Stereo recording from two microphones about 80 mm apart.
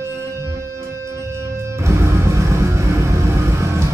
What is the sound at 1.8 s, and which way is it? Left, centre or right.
Music, right.